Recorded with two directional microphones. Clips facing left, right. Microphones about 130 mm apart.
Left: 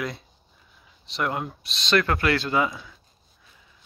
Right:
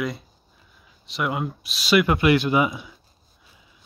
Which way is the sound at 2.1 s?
20° right (ahead or behind).